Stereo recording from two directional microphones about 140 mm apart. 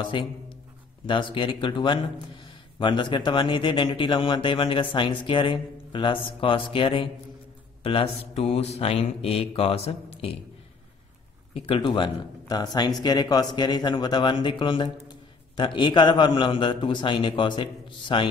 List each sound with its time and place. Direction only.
0.0 s speech: 35° left (ahead or behind)
11.5 s speech: 40° left (ahead or behind)